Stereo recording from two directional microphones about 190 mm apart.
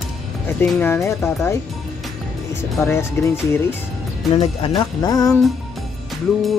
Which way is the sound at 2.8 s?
15° left (ahead or behind).